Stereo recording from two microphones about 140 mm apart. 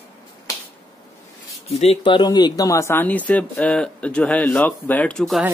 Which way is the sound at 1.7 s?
50° left (ahead or behind).